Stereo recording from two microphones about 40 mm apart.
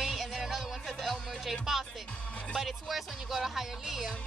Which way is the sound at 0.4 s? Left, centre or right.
Centre.